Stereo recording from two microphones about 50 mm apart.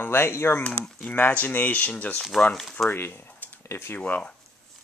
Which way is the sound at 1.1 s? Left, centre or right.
Left.